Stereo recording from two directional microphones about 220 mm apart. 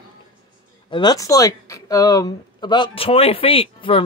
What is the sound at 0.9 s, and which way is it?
Speech, 20° left (ahead or behind).